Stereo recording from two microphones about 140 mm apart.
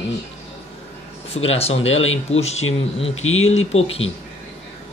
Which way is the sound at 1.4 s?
50° left (ahead or behind).